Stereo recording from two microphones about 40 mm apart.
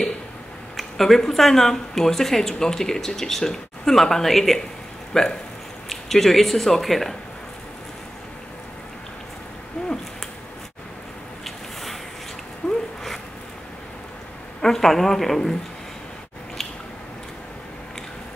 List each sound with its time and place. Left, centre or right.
0.7 s speech: centre
11.4 s vehicle: centre
12.6 s a sound: left
14.6 s speech: centre